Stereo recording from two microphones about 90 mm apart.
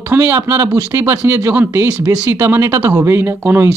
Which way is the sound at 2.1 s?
35° right (ahead or behind).